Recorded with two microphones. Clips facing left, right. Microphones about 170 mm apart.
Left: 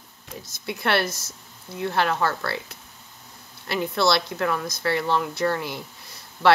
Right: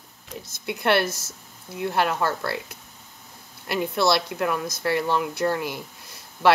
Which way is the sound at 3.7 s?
15° right (ahead or behind).